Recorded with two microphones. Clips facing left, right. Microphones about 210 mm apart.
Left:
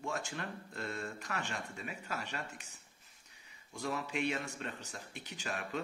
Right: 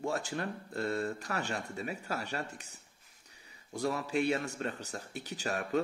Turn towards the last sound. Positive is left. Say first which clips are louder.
# right 7 dB
turn(degrees=-40)  # may be behind; listen again after turning